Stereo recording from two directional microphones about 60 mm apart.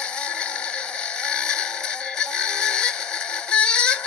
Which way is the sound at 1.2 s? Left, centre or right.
Centre.